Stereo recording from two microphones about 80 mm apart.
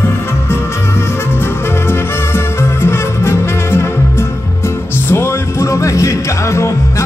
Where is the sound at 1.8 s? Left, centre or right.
Left.